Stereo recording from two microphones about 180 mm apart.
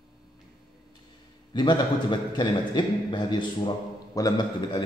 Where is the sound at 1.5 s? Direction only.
25° left (ahead or behind).